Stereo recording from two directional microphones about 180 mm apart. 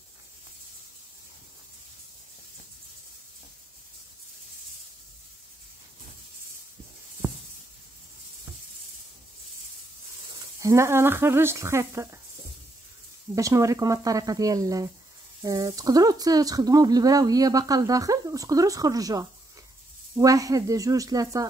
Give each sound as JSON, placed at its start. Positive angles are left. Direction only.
{"t": 10.6, "sound": "speech", "side_deg": -15}
{"t": 13.3, "sound": "speech", "side_deg": -15}